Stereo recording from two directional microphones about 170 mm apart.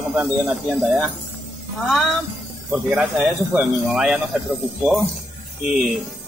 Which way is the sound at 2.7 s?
5° right (ahead or behind).